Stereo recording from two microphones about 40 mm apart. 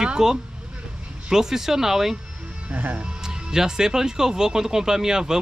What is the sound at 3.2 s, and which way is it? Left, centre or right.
Speech, centre.